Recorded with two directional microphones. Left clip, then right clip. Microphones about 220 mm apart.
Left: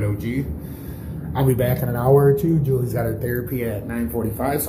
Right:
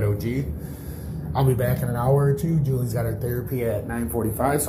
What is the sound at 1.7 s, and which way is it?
Speech, 10° left (ahead or behind).